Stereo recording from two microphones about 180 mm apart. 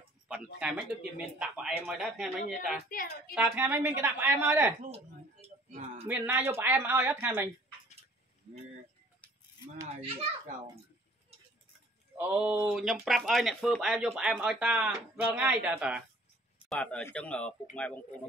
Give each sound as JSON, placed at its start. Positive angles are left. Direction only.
{"t": 0.6, "sound": "speech", "side_deg": -5}
{"t": 2.9, "sound": "a woman's voice", "side_deg": 50}
{"t": 3.3, "sound": "speech", "side_deg": -5}
{"t": 5.7, "sound": "speech", "side_deg": -45}
{"t": 6.0, "sound": "speech", "side_deg": -10}
{"t": 12.2, "sound": "speech", "side_deg": -10}
{"t": 16.6, "sound": "speech", "side_deg": 5}